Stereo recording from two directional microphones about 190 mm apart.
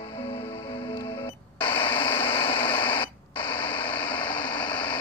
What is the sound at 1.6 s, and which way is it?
Radio, 10° left (ahead or behind).